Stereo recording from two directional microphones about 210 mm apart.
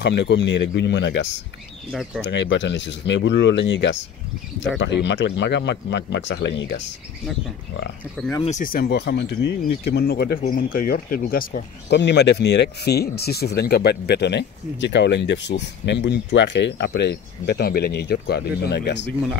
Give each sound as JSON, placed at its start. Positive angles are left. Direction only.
{"t": 0.0, "sound": "speech", "side_deg": 55}
{"t": 1.9, "sound": "speech", "side_deg": 0}
{"t": 2.2, "sound": "speech", "side_deg": 60}
{"t": 8.5, "sound": "speech", "side_deg": 40}